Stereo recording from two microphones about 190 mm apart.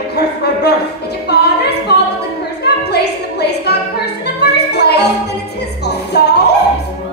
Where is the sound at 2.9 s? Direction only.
60° left (ahead or behind).